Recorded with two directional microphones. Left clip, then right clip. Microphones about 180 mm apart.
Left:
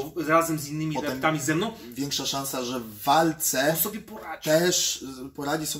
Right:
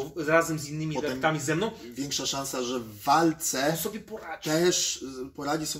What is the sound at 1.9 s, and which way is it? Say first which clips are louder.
Speech: left 2 dB; 15° left (ahead or behind).